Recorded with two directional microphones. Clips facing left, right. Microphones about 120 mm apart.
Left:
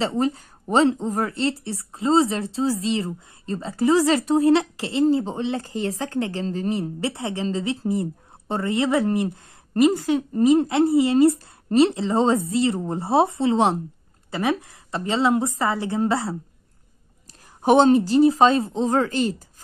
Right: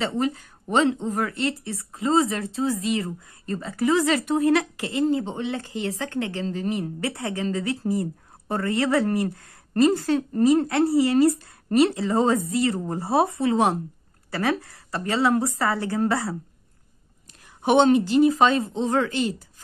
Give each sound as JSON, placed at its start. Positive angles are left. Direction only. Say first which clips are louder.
{"t": 0.0, "sound": "speech", "louder": "left 2 dB", "side_deg": 35}
{"t": 17.6, "sound": "speech", "louder": "left 2 dB", "side_deg": 40}